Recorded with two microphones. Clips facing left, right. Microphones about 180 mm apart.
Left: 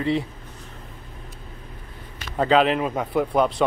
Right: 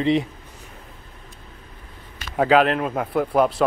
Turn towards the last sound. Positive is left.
turn(degrees=0)  # may be behind; listen again after turning